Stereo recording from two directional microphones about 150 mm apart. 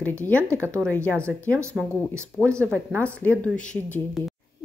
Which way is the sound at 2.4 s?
20° right (ahead or behind).